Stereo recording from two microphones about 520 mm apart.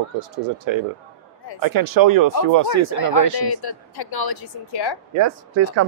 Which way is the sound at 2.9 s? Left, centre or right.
Left.